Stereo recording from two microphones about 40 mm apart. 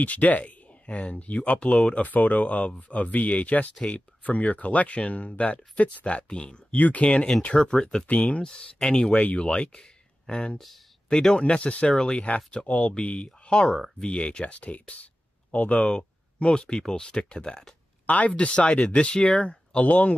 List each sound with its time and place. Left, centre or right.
0.0 s speech: left
2.0 s speech: left
6.7 s speech: left
7.5 s speech: left
11.1 s speech: centre; by 11.9 s left
12.0 s speech: left
12.6 s speech: left
15.8 s speech: left
18.0 s speech: left
19.9 s speech: left